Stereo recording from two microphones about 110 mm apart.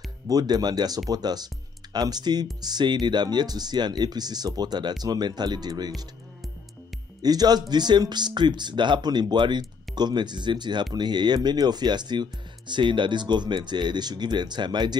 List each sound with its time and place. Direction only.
0.3 s speech: 35° right (ahead or behind)
7.2 s speech: 35° right (ahead or behind)